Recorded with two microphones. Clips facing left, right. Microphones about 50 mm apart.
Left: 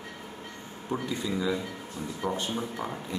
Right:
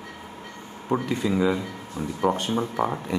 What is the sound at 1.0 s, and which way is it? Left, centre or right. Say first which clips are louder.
Speech: right 6 dB; right.